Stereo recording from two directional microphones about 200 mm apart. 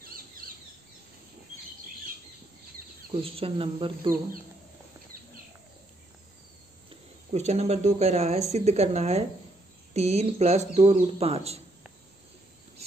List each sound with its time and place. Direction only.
3.2 s speech: 30° right (ahead or behind)
6.9 s speech: 30° right (ahead or behind)